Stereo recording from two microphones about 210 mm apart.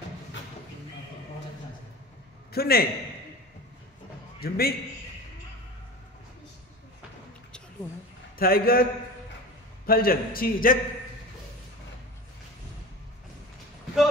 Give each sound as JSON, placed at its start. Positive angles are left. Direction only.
{"t": 2.5, "sound": "a man's voice", "side_deg": 45}
{"t": 4.4, "sound": "a man's voice", "side_deg": 45}
{"t": 8.4, "sound": "a man's voice", "side_deg": 45}
{"t": 9.8, "sound": "a man's voice", "side_deg": 45}